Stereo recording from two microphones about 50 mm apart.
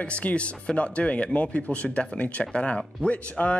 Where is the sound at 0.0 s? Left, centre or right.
Left.